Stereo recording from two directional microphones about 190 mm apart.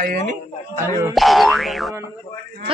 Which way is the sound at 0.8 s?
15° right (ahead or behind).